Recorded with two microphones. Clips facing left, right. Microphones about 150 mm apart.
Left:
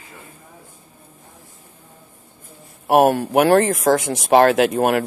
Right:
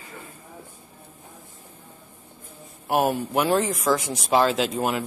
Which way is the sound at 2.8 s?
65° left (ahead or behind).